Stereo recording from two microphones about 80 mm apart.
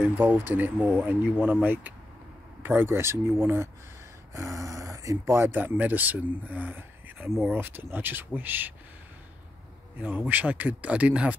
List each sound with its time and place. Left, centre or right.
0.0 s speech: right
10.0 s speech: right